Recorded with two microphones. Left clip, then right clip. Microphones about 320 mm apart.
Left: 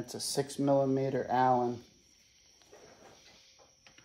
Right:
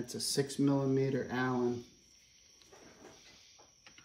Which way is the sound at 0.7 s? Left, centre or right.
Left.